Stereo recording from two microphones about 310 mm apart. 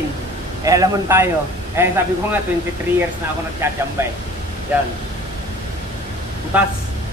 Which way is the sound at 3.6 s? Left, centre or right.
Centre.